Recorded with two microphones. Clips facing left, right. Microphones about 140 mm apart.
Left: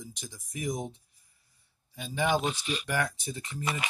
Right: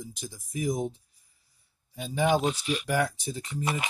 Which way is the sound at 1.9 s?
15° right (ahead or behind).